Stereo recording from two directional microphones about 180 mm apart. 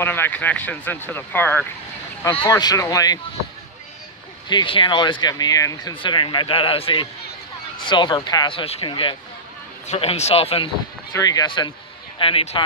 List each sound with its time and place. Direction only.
0.0 s speech: 10° left (ahead or behind)
4.5 s a man's voice: 25° left (ahead or behind)
11.1 s a man's voice: 20° left (ahead or behind)